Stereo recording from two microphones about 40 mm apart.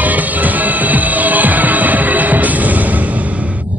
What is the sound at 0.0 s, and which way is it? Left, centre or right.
Music, right.